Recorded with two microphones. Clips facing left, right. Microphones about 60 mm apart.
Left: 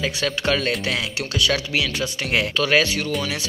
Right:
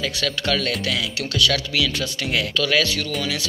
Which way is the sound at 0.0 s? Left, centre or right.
Left.